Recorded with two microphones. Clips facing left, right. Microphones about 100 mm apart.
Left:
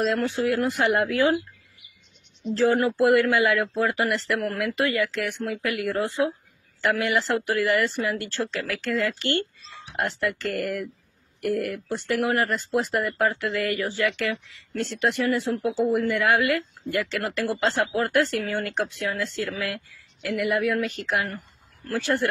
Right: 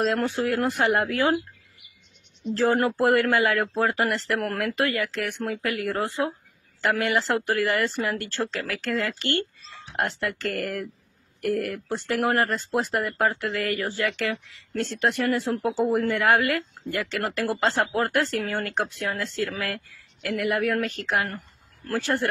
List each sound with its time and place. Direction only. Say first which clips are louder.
0.2 s speech: left 1 dB; 45° right (ahead or behind)
2.5 s speech: left 1 dB; 45° right (ahead or behind)